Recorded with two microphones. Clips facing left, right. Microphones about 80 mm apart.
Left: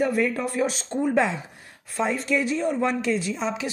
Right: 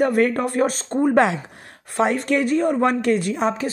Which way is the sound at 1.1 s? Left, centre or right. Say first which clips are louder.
Right 5 dB; right.